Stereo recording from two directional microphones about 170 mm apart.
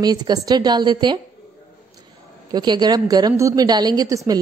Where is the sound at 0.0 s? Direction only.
25° right (ahead or behind).